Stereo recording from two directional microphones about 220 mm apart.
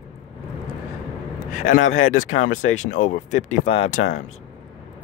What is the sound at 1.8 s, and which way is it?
Speech, 65° left (ahead or behind).